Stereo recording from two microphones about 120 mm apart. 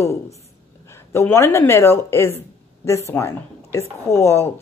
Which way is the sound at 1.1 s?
20° left (ahead or behind).